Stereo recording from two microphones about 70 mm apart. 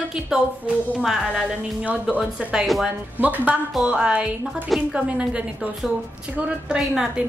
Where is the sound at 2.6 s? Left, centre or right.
Centre.